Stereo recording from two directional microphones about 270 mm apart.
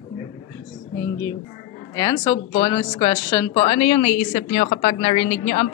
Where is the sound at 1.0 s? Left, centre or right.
Centre.